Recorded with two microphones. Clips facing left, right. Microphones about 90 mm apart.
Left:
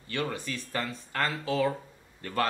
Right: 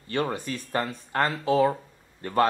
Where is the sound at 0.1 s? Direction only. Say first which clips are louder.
Right 5 dB; 40° right (ahead or behind).